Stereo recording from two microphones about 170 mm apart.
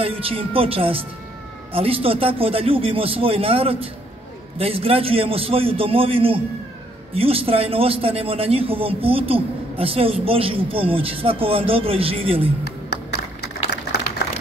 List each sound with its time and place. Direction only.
0.0 s a man's voice: 35° right (ahead or behind)